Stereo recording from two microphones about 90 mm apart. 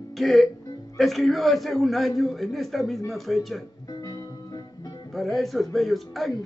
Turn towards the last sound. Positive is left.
turn(degrees=0)  # may be behind; listen again after turning